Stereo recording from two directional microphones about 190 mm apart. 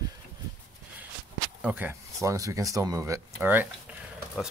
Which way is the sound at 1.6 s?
10° right (ahead or behind).